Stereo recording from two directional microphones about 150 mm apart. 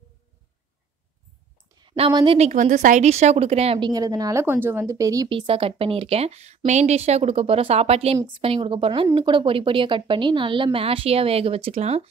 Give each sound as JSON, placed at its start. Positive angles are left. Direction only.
{"t": 1.8, "sound": "a woman's voice", "side_deg": -35}
{"t": 2.4, "sound": "speech", "side_deg": -55}
{"t": 3.9, "sound": "a woman's voice", "side_deg": -25}
{"t": 5.3, "sound": "a woman's voice", "side_deg": -40}